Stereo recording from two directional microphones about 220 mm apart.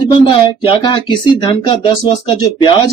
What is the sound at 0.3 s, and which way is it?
Speech, 25° left (ahead or behind).